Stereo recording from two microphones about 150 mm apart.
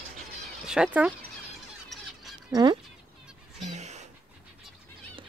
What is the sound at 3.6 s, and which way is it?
Honk, 50° right (ahead or behind).